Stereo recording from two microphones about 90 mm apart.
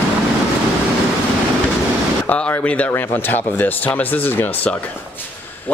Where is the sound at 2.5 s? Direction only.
15° left (ahead or behind).